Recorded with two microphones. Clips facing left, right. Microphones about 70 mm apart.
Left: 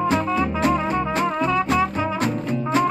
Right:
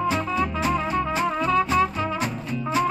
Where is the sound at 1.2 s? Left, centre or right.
Centre.